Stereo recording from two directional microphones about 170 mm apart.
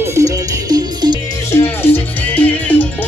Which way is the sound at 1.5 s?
15° left (ahead or behind).